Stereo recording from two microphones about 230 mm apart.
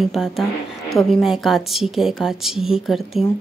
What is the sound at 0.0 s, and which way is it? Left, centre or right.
A woman's voice, centre.